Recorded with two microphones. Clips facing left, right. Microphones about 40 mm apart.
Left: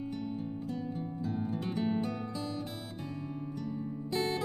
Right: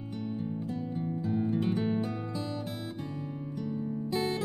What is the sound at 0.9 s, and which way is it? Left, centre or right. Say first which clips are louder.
Music: right 4 dB; centre.